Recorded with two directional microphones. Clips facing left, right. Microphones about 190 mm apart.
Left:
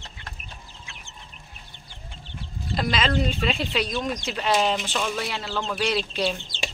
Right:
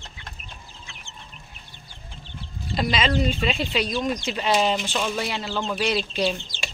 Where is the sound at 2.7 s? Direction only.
Centre (ahead or behind).